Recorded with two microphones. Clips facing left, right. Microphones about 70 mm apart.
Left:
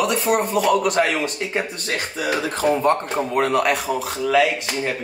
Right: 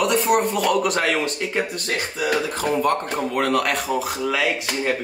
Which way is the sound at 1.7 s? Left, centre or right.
Left.